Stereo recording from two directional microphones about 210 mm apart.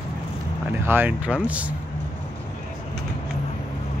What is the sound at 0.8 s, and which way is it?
Speech, 10° right (ahead or behind).